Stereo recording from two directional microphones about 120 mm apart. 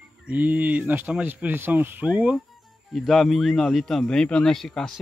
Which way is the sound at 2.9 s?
Centre (ahead or behind).